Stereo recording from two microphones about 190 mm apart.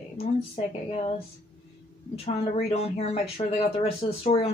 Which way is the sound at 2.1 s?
30° left (ahead or behind).